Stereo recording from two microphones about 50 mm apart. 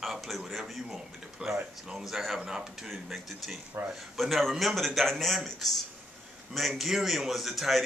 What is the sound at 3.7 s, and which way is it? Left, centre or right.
Speech, right.